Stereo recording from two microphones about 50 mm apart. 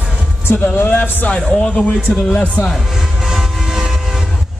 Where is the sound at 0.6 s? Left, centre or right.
Left.